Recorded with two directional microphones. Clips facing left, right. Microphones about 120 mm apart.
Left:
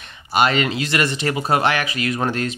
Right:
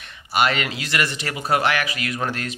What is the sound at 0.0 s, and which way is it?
Speech, 25° left (ahead or behind).